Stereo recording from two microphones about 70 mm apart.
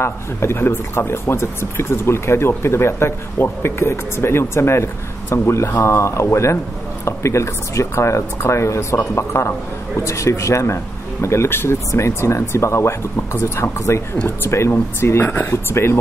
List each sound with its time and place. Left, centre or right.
0.0 s speech: left
15.5 s speech: left